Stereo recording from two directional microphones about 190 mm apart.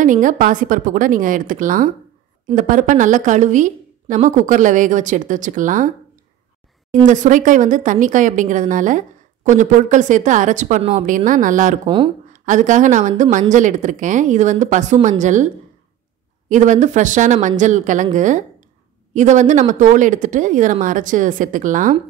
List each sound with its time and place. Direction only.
0.0 s a woman's voice: 45° right (ahead or behind)
7.1 s a woman's voice: 40° right (ahead or behind)